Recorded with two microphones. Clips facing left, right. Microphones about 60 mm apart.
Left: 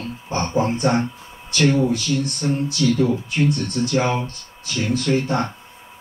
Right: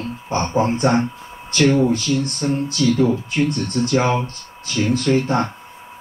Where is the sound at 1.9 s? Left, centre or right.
Right.